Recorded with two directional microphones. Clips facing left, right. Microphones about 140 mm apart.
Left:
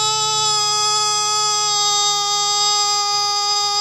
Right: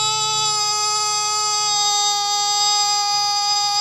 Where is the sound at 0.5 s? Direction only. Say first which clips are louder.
Left 2 dB; 25° right (ahead or behind).